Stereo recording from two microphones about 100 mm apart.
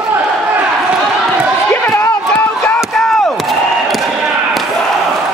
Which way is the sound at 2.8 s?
5° left (ahead or behind).